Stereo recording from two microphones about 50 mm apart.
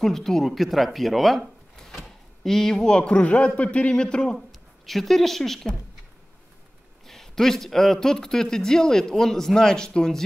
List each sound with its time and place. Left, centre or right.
0.0 s speech: centre
4.5 s a woman's voice: centre
7.1 s speech: centre